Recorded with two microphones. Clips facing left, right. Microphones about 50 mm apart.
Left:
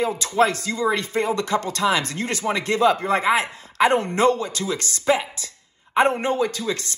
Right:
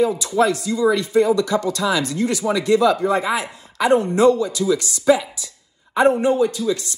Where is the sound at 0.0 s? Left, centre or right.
Left.